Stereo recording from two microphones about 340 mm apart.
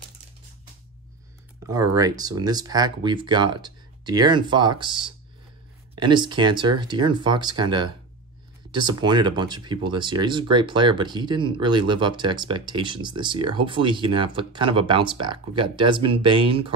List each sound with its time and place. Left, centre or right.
1.7 s speech: centre
5.9 s speech: centre